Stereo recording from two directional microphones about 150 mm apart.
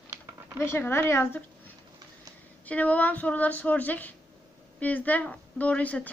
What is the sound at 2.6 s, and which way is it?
A woman's voice, 10° left (ahead or behind).